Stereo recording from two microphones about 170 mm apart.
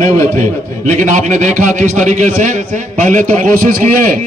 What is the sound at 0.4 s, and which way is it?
A man's voice, 45° right (ahead or behind).